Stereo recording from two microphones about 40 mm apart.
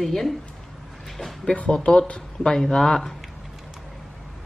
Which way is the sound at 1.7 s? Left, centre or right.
Left.